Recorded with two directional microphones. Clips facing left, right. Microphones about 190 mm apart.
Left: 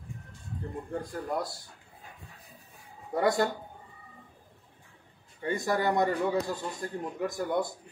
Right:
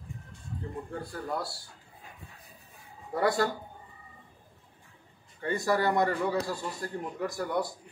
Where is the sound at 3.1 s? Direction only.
20° left (ahead or behind).